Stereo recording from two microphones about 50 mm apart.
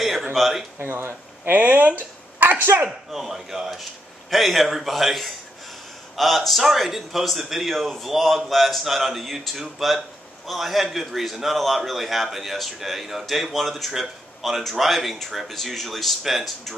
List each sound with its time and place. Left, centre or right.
0.0 s speech: centre
0.7 s speech: right
1.5 s speech: right
2.6 s speech: right
3.1 s a man's voice: centre